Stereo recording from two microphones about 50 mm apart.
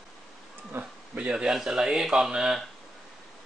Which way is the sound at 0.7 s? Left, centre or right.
Right.